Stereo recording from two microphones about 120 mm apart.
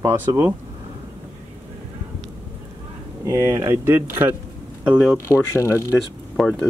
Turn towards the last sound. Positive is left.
turn(degrees=5)  # may be behind; listen again after turning